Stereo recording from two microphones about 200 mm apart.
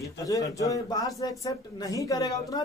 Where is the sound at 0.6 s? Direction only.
15° left (ahead or behind).